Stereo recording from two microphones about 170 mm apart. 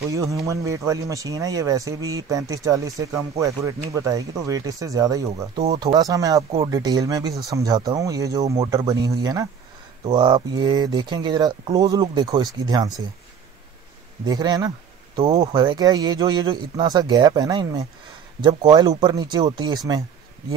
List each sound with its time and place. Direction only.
0.1 s speech: 20° right (ahead or behind)
14.2 s speech: 20° right (ahead or behind)
19.9 s a sound: 20° right (ahead or behind)